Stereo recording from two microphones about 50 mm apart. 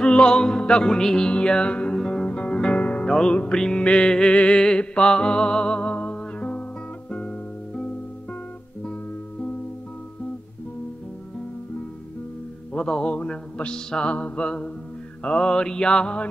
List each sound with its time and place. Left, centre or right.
0.0 s music: centre
3.1 s music: centre
12.7 s music: centre
13.3 s mantra: centre